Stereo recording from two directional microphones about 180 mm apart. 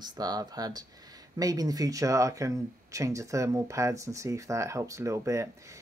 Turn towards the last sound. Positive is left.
turn(degrees=-15)  # may be behind; listen again after turning